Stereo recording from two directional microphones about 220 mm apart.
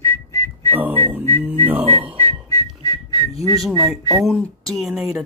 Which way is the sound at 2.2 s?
15° left (ahead or behind).